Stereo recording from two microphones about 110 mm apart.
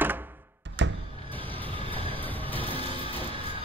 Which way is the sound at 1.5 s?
15° left (ahead or behind).